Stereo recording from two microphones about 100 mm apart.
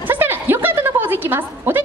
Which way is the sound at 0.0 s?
20° right (ahead or behind).